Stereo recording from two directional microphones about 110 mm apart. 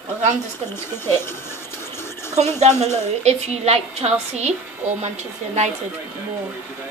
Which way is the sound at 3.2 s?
80° right.